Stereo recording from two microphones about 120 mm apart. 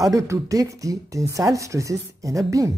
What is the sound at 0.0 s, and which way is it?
Speech, 25° right (ahead or behind).